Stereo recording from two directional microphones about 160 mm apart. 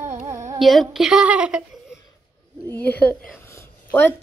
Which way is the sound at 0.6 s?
Centre (ahead or behind).